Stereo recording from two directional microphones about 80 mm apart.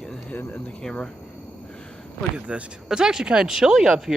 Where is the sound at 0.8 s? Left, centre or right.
Centre.